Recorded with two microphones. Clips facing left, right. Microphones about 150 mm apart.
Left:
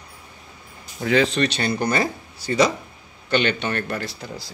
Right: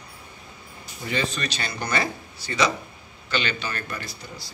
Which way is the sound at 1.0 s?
90° left.